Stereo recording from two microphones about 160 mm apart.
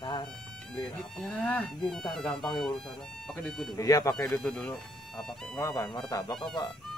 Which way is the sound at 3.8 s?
20° left (ahead or behind).